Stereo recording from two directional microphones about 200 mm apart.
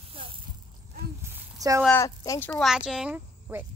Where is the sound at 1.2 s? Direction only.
15° right (ahead or behind).